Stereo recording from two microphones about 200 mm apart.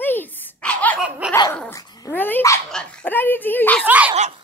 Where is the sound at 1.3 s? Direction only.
15° left (ahead or behind).